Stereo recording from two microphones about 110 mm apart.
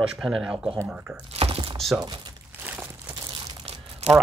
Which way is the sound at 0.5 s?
55° right (ahead or behind).